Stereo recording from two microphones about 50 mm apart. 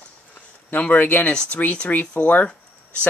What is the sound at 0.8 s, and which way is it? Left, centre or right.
Speech, left.